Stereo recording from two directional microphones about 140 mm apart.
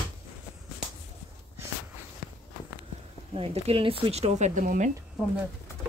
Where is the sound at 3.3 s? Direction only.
40° right (ahead or behind); by 4.9 s 65° right (ahead or behind).